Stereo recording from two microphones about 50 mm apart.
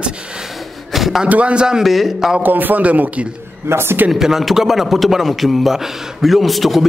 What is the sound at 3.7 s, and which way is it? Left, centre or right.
Speech, right.